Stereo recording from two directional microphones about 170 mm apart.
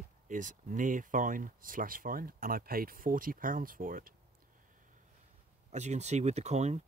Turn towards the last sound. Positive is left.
turn(degrees=-40)  # may be behind; listen again after turning